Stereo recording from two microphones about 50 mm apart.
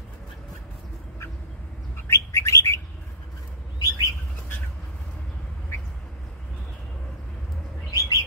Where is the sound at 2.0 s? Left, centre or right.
Left.